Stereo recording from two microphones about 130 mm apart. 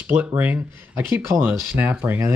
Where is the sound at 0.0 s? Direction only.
15° right (ahead or behind).